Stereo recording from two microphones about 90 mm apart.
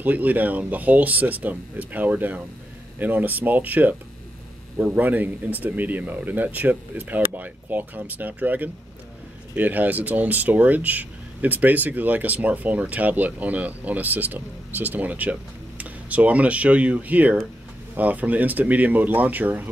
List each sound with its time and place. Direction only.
0.0 s speech: 20° right (ahead or behind)